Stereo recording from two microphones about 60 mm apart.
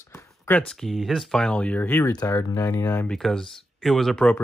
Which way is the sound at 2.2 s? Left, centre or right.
Left.